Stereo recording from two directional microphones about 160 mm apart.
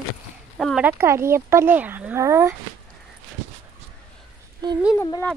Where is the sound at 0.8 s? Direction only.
15° right (ahead or behind).